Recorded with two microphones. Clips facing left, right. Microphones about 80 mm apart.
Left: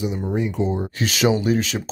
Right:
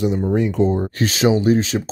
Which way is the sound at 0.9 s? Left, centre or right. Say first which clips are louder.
Right 3 dB; right.